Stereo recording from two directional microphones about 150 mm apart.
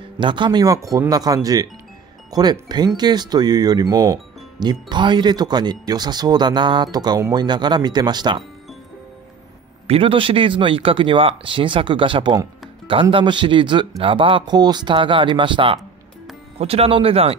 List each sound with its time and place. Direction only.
0.2 s speech: 30° right (ahead or behind)
9.8 s speech: 40° right (ahead or behind)